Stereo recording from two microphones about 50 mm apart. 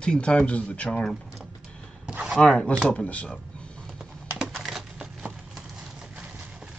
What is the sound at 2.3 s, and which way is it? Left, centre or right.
Speech, centre.